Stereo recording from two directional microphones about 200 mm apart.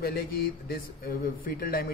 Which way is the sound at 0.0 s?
50° left (ahead or behind).